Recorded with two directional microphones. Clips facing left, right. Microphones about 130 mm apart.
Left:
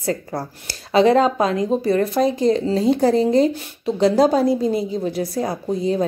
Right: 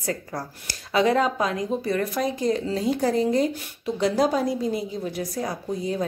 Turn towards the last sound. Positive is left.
turn(degrees=30)  # may be behind; listen again after turning